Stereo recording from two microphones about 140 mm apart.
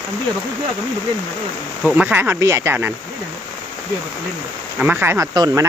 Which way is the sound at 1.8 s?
10° right (ahead or behind).